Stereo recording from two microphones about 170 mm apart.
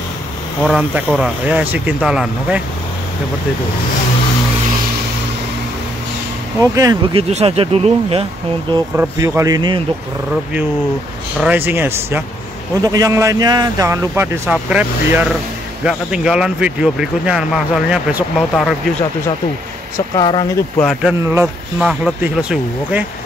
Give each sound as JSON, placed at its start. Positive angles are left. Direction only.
{"t": 0.6, "sound": "speech", "side_deg": -5}
{"t": 6.6, "sound": "speech", "side_deg": -20}
{"t": 7.2, "sound": "speech", "side_deg": -40}
{"t": 8.9, "sound": "speech", "side_deg": -15}
{"t": 11.3, "sound": "a man's voice", "side_deg": -10}
{"t": 20.2, "sound": "speech", "side_deg": 25}
{"t": 21.7, "sound": "a man's voice", "side_deg": -5}